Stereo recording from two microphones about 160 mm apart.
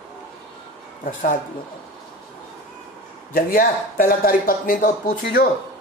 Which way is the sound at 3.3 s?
65° left (ahead or behind).